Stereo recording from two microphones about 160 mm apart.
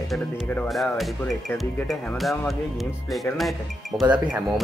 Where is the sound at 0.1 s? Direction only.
Centre (ahead or behind).